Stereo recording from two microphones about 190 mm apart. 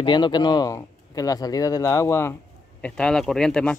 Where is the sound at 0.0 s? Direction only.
25° left (ahead or behind).